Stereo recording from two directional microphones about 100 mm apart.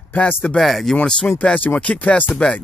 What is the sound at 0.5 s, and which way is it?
Speech, centre (ahead or behind).